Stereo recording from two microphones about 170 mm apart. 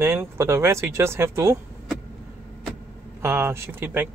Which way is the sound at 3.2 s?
15° right (ahead or behind).